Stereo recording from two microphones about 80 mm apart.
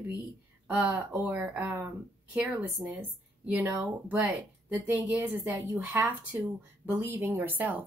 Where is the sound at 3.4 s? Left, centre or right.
Right.